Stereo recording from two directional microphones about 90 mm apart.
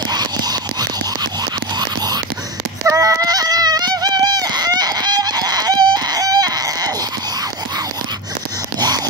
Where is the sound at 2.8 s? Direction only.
30° right (ahead or behind).